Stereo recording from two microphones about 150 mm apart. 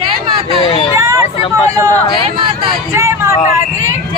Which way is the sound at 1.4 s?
35° left (ahead or behind).